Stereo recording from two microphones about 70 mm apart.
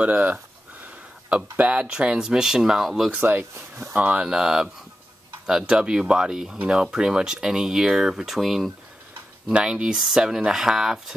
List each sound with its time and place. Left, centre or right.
0.0 s speech: right; by 3.1 s centre
3.1 s speech: right
3.9 s speech: centre
9.5 s speech: centre